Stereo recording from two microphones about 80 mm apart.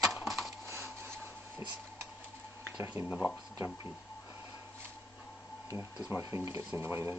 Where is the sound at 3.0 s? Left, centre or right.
Right.